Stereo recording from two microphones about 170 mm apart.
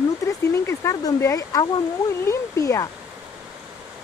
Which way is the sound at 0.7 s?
15° left (ahead or behind).